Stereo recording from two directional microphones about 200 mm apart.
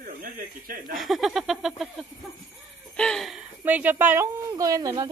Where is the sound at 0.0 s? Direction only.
45° right (ahead or behind).